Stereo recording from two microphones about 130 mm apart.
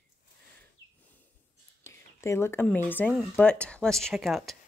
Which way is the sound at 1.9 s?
20° left (ahead or behind).